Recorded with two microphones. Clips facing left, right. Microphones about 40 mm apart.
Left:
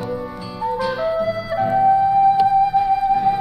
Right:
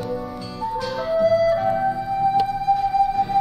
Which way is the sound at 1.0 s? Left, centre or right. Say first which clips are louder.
Right 4 dB; centre.